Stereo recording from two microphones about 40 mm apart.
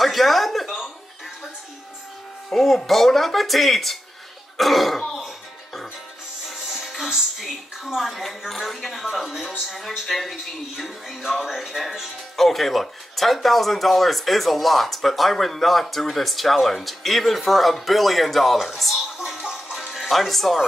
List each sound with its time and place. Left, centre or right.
0.0 s a sound: centre
2.5 s speech: centre
6.5 s speech: centre
12.4 s speech: centre
18.9 s music: centre
19.4 s music: centre
19.9 s speech: centre